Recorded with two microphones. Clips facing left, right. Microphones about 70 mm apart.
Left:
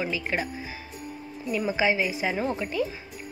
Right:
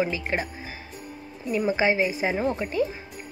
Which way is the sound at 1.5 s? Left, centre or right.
Right.